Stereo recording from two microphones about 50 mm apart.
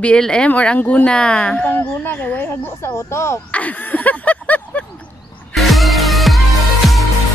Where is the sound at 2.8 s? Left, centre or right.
Left.